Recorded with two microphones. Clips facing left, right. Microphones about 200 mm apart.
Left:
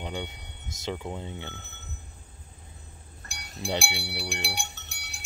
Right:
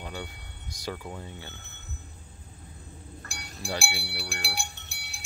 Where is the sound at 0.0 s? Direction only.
20° left (ahead or behind).